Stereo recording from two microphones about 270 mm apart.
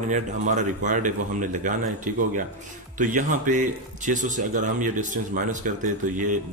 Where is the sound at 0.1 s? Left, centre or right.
Right.